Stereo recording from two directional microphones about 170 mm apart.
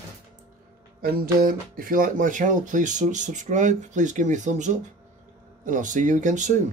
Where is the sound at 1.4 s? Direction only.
55° right (ahead or behind).